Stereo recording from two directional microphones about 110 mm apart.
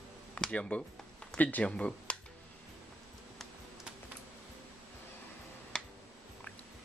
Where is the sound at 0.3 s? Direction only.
10° left (ahead or behind).